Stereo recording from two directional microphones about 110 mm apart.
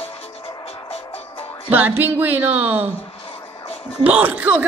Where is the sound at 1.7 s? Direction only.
15° right (ahead or behind).